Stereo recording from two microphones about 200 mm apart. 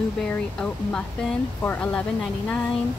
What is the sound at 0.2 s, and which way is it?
Speech, 5° left (ahead or behind).